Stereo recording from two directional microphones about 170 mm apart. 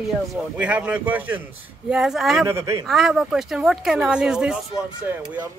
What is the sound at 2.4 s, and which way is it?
Speech, 15° right (ahead or behind).